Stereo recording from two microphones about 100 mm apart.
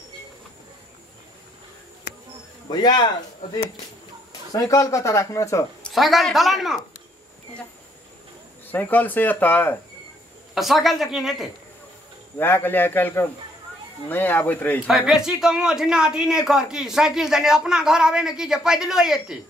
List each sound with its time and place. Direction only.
2.7 s speech: 45° left (ahead or behind)
4.5 s speech: 40° left (ahead or behind)
5.8 s speech: 5° left (ahead or behind)
8.7 s speech: 20° left (ahead or behind)
10.5 s speech: centre (ahead or behind)
12.4 s speech: 20° left (ahead or behind)
14.9 s speech: 5° right (ahead or behind)